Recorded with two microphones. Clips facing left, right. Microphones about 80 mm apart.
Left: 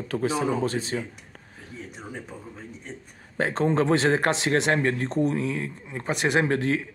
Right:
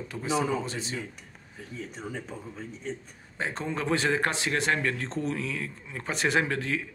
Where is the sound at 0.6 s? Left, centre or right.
Left.